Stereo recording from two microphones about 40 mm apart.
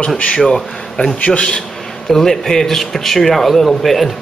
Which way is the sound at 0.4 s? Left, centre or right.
Centre.